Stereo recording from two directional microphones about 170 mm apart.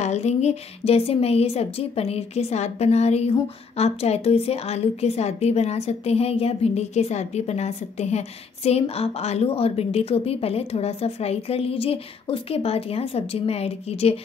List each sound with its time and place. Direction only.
0.0 s a woman's voice: 40° left (ahead or behind)